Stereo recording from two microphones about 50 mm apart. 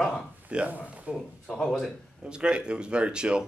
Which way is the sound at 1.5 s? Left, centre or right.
Centre.